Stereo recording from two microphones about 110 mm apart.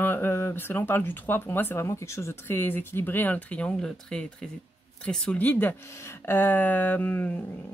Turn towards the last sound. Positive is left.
turn(degrees=15)  # may be behind; listen again after turning